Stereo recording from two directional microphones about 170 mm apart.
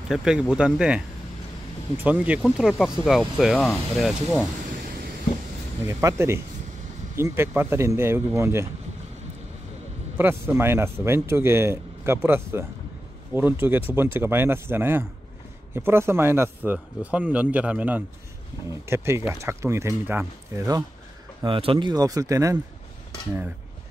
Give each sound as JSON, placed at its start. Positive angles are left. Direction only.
{"t": 0.1, "sound": "speech", "side_deg": -5}
{"t": 2.0, "sound": "speech", "side_deg": -10}
{"t": 5.9, "sound": "speech", "side_deg": -15}
{"t": 10.1, "sound": "speech", "side_deg": -15}
{"t": 21.5, "sound": "speech", "side_deg": -30}